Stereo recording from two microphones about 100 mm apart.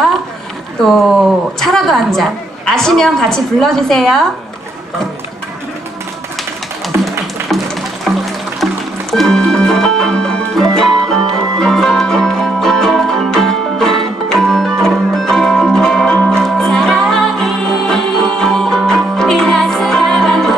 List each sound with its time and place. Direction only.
0.8 s a woman's voice: centre (ahead or behind)
7.4 s a sound: centre (ahead or behind)
9.1 s music: 5° left (ahead or behind)